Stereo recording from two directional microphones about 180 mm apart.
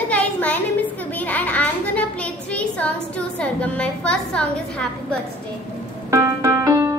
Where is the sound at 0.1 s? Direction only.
10° left (ahead or behind).